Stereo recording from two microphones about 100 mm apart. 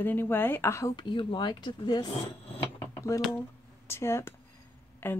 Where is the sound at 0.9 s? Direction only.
50° left (ahead or behind).